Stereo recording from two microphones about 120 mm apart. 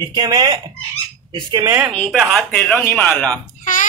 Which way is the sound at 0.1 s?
35° right (ahead or behind).